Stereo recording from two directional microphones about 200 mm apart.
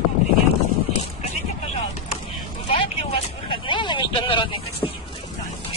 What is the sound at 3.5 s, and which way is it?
Vehicle, 25° left (ahead or behind).